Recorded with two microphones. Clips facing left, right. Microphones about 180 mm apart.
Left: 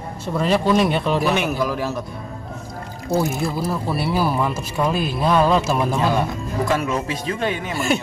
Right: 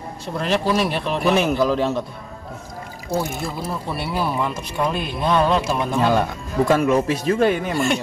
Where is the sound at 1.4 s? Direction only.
25° right (ahead or behind).